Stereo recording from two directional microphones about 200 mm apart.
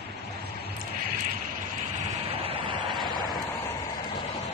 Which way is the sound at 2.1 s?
30° right (ahead or behind).